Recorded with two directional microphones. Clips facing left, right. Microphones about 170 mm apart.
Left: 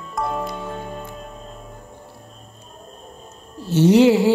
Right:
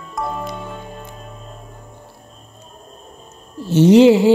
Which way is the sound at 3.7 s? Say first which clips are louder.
Right 4 dB; 20° right (ahead or behind).